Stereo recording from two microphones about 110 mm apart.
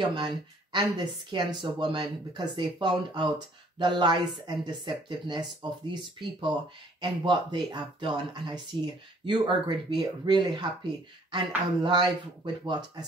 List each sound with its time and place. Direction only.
0.0 s speech: 45° right (ahead or behind)
7.0 s speech: 45° right (ahead or behind)